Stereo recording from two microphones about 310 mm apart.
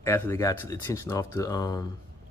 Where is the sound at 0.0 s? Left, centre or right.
Centre.